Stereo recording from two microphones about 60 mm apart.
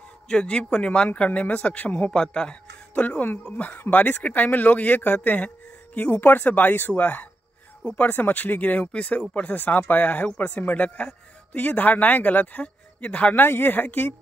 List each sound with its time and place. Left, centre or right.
0.3 s speech: centre
2.9 s speech: left
9.6 s speech: left